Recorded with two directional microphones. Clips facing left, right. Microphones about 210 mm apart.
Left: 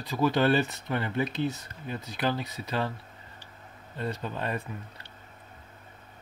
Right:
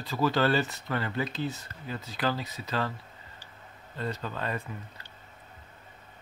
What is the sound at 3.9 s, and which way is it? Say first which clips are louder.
Speech: left 1 dB; 15° left (ahead or behind).